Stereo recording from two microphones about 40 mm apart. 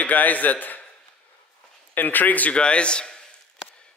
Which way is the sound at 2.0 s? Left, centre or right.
Left.